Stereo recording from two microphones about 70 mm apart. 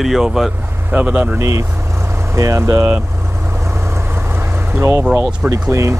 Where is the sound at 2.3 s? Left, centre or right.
Right.